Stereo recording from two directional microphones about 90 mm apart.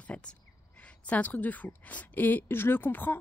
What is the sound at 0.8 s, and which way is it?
A woman's voice, 15° left (ahead or behind).